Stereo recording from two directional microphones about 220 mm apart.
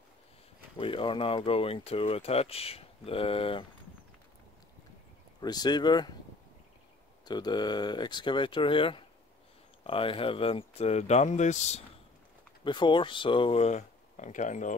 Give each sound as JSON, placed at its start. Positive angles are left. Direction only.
{"t": 0.7, "sound": "speech", "side_deg": 25}
{"t": 5.4, "sound": "speech", "side_deg": 20}
{"t": 7.2, "sound": "speech", "side_deg": 20}
{"t": 12.6, "sound": "speech", "side_deg": 20}